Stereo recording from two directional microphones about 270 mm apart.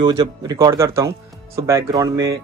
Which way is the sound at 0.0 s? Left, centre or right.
Centre.